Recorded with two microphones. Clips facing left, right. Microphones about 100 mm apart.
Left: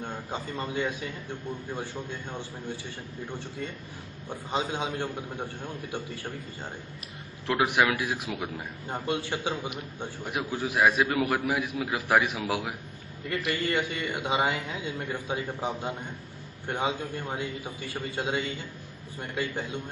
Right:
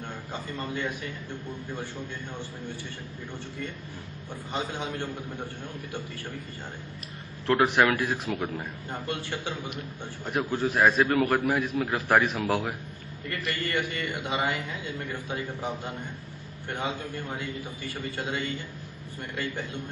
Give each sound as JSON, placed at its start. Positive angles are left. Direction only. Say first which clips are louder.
{"t": 0.0, "sound": "a man's voice", "louder": "left 2 dB", "side_deg": 20}
{"t": 4.5, "sound": "a man's voice", "louder": "left 2 dB", "side_deg": 20}
{"t": 7.4, "sound": "a man's voice", "louder": "right 2 dB", "side_deg": 10}
{"t": 18.1, "sound": "a man's voice", "louder": "left 4 dB", "side_deg": 20}